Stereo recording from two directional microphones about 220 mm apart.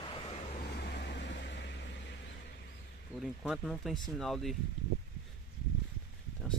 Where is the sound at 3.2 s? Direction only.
Centre (ahead or behind).